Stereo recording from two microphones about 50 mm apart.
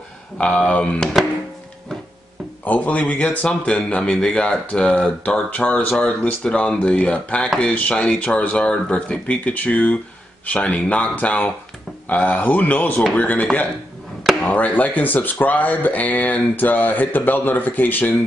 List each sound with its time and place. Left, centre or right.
0.4 s speech: left
2.6 s speech: left
7.4 s speech: centre
8.0 s speech: left